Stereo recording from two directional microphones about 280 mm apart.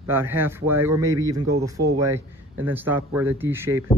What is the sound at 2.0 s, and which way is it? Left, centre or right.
A man's voice, centre.